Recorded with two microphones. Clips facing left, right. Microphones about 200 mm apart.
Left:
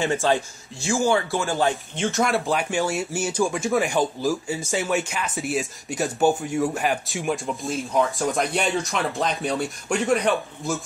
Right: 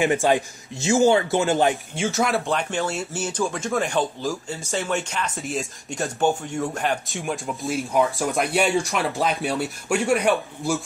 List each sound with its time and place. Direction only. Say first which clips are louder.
0.0 s a man's voice: right 2 dB; 15° right (ahead or behind)
2.0 s speech: even; centre (ahead or behind)